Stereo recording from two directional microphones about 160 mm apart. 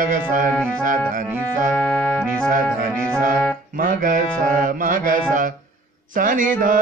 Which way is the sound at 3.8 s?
60° right (ahead or behind).